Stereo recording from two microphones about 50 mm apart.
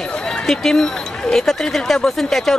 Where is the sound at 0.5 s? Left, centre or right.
Centre.